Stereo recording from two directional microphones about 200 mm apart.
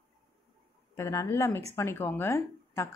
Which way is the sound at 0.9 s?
15° left (ahead or behind).